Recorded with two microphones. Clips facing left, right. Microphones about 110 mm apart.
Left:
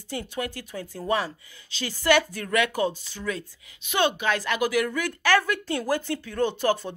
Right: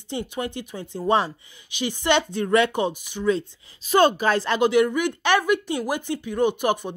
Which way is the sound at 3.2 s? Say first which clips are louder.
Right 9 dB; 30° right (ahead or behind).